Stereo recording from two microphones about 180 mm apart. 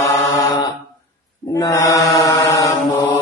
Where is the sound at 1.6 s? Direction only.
20° left (ahead or behind).